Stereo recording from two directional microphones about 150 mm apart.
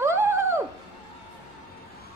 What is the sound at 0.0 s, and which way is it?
Dog, 15° right (ahead or behind).